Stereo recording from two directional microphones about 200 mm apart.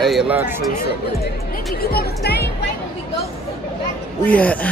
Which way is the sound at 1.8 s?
50° left (ahead or behind).